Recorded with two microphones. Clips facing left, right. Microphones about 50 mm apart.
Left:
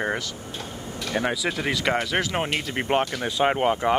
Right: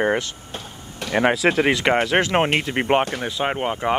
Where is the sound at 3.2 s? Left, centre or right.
Centre.